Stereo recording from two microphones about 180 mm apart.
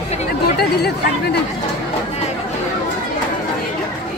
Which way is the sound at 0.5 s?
60° left (ahead or behind).